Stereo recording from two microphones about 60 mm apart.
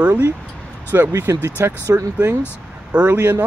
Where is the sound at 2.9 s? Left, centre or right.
Right.